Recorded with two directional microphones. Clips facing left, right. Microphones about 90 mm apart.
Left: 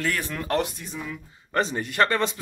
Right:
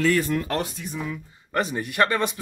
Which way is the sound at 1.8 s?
15° right (ahead or behind).